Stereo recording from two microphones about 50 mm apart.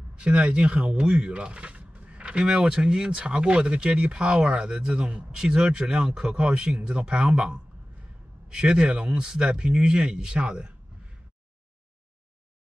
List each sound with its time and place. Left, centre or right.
0.1 s a man's voice: right